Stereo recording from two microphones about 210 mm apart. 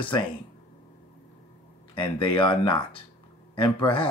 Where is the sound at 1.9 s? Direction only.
25° left (ahead or behind).